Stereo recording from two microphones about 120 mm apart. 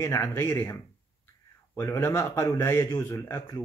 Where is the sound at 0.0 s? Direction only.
25° left (ahead or behind).